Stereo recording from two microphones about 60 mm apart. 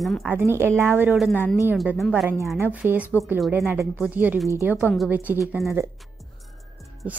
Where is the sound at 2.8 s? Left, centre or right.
Right.